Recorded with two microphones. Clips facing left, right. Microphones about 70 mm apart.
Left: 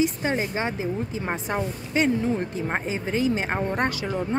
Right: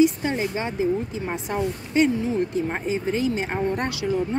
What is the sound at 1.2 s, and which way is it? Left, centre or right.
Speech, left.